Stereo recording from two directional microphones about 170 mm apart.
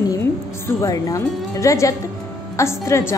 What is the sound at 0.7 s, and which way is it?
A woman's voice, 20° left (ahead or behind).